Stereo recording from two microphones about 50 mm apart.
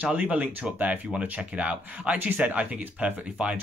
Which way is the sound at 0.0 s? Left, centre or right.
Right.